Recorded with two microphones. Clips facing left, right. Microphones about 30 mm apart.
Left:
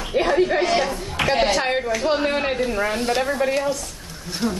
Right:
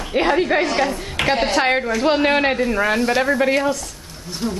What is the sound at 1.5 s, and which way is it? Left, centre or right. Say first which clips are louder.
Speech: right 3 dB; right.